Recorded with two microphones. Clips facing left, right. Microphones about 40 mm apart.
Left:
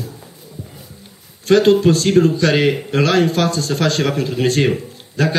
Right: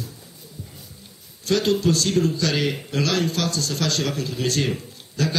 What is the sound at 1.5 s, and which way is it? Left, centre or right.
Speech, left.